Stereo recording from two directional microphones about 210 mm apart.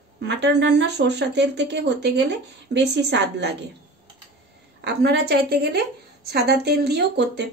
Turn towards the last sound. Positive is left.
turn(degrees=-55)  # may be behind; listen again after turning